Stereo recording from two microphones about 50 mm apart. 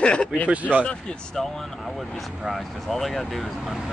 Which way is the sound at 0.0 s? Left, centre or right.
Centre.